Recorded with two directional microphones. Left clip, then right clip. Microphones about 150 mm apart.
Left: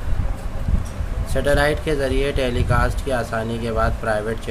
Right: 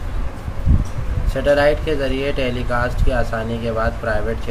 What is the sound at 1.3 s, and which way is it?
Speech, 35° left (ahead or behind).